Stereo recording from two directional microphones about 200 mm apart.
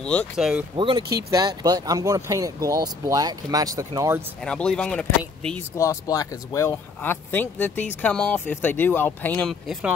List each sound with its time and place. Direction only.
0.0 s speech: 5° left (ahead or behind)
0.7 s speech: 25° right (ahead or behind)
4.4 s speech: 5° left (ahead or behind)
5.8 s speech: 15° left (ahead or behind); by 9.9 s centre (ahead or behind)